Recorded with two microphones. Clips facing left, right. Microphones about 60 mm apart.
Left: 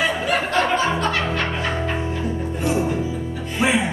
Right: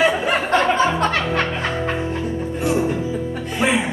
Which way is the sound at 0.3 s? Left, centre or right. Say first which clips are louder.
Right 2 dB; right.